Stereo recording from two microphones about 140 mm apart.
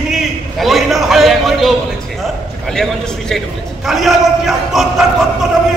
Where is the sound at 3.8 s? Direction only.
Centre (ahead or behind).